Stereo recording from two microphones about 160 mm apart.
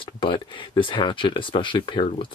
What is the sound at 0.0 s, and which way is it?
Speech, 30° left (ahead or behind).